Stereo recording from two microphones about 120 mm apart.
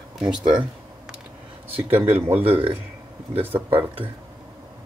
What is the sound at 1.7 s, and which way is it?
Speech, 50° right (ahead or behind).